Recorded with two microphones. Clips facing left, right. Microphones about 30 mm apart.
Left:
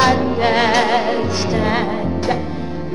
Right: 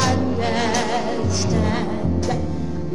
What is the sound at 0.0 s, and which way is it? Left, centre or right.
Music, left.